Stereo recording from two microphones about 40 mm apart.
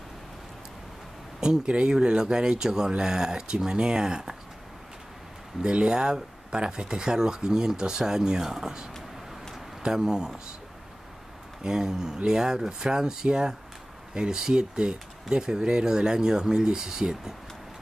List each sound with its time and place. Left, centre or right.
1.7 s speech: right
5.6 s speech: right
9.8 s speech: centre
11.6 s speech: centre